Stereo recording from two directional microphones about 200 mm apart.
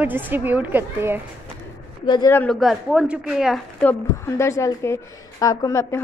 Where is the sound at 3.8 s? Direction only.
15° left (ahead or behind).